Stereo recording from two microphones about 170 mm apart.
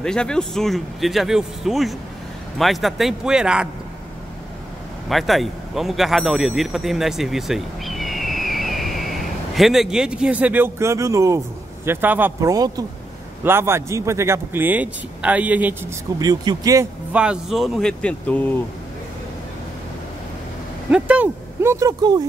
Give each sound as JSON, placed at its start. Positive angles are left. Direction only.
{"t": 0.0, "sound": "a man's voice", "side_deg": 5}
{"t": 5.1, "sound": "a man's voice", "side_deg": 0}
{"t": 16.2, "sound": "speech", "side_deg": -25}
{"t": 17.1, "sound": "a man's voice", "side_deg": -5}
{"t": 20.9, "sound": "a man's voice", "side_deg": -10}